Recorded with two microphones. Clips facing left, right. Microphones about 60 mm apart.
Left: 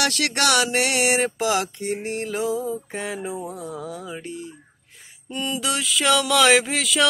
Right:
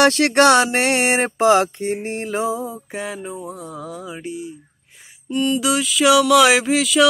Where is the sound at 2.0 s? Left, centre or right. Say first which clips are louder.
Right 3 dB; right.